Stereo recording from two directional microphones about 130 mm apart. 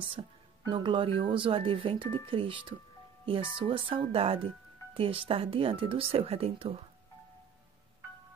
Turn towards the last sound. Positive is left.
turn(degrees=-50)  # may be behind; listen again after turning